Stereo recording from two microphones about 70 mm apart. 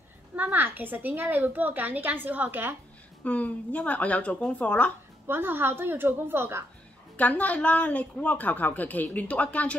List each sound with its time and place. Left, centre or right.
0.4 s a woman's voice: right
3.3 s a woman's voice: left
5.2 s a woman's voice: right
7.2 s a woman's voice: left